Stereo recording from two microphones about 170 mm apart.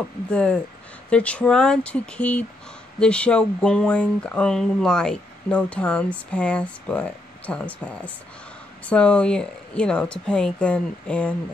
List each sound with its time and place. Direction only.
0.3 s speech: 5° left (ahead or behind)